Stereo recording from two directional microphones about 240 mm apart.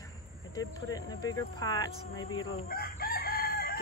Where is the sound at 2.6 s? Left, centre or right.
Left.